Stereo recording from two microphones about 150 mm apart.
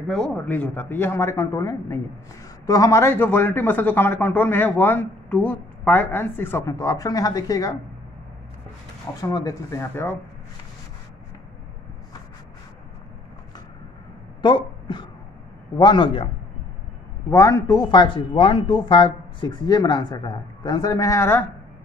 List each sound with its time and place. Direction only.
0.1 s speech: 5° left (ahead or behind); by 7.7 s 25° left (ahead or behind)
9.2 s speech: 25° left (ahead or behind)
14.4 s a man's voice: 30° left (ahead or behind)
17.3 s speech: 20° left (ahead or behind)